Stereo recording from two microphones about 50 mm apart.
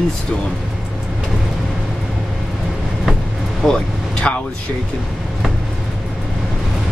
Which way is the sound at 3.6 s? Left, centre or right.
Centre.